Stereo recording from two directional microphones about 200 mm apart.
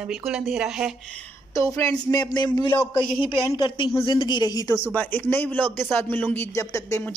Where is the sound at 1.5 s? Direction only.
15° left (ahead or behind).